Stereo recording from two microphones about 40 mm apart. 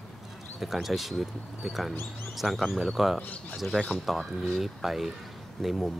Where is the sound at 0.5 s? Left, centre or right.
Centre.